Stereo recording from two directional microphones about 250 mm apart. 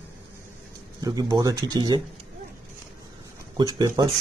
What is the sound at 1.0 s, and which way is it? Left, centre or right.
Speech, centre.